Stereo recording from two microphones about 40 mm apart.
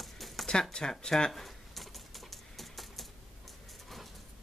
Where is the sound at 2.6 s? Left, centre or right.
Centre.